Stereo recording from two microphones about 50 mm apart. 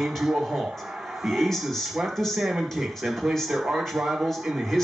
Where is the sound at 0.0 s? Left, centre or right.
Centre.